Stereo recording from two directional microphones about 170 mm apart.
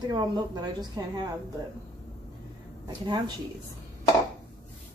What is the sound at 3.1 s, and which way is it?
Speech, 25° right (ahead or behind).